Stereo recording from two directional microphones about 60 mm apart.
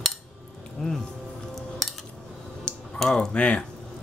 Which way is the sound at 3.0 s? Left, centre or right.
Centre.